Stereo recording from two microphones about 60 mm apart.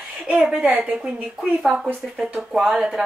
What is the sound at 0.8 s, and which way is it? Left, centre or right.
A woman's voice, centre.